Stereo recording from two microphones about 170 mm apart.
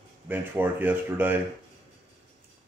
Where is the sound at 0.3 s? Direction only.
10° right (ahead or behind).